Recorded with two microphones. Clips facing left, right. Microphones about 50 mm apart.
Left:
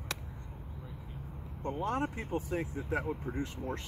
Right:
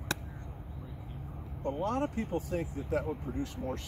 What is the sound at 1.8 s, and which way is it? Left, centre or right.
Speech, left.